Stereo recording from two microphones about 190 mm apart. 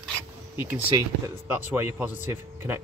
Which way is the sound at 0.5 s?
10° right (ahead or behind).